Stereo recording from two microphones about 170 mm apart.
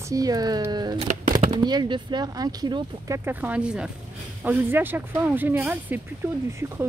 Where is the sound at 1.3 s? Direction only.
25° right (ahead or behind).